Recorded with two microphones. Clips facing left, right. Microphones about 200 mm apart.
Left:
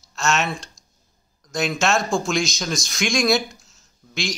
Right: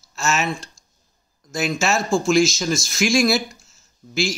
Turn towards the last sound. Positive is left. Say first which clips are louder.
# right 5 dB
turn(degrees=-5)  # may be behind; listen again after turning